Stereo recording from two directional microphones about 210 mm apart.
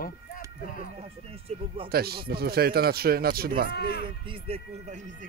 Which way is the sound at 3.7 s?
50° left (ahead or behind).